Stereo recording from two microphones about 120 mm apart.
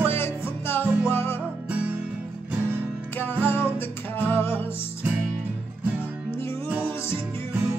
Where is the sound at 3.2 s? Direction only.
15° left (ahead or behind).